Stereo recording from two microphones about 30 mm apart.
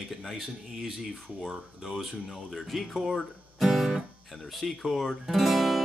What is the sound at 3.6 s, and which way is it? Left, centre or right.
Music, centre.